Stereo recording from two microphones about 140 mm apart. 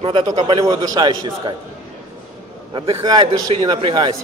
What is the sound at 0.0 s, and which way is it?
A man's voice, 35° right (ahead or behind).